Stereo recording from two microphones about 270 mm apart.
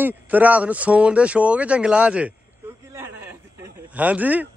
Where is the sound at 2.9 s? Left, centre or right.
Centre.